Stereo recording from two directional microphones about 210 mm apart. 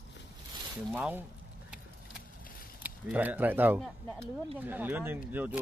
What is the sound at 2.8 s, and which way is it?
Speech, 5° right (ahead or behind).